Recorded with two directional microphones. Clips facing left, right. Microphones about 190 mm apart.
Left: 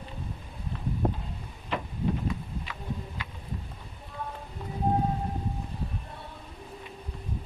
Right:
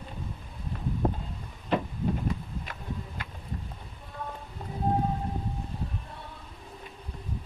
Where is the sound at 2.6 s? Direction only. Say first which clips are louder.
Left 1 dB; 45° right (ahead or behind).